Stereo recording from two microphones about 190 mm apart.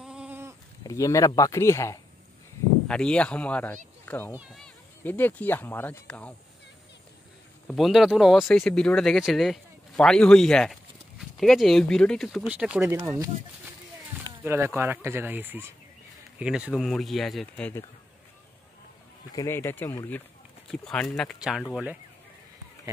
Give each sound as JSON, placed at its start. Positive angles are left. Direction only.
{"t": 0.0, "sound": "sheep", "side_deg": -5}
{"t": 0.8, "sound": "speech", "side_deg": 15}
{"t": 4.0, "sound": "a sound", "side_deg": 10}
{"t": 4.3, "sound": "a man's voice", "side_deg": -5}
{"t": 5.0, "sound": "speech", "side_deg": 10}
{"t": 7.6, "sound": "speech", "side_deg": 0}
{"t": 14.4, "sound": "a man's voice", "side_deg": -10}
{"t": 19.3, "sound": "a man's voice", "side_deg": 15}